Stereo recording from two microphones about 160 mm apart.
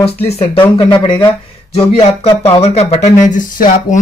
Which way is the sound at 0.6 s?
30° left (ahead or behind).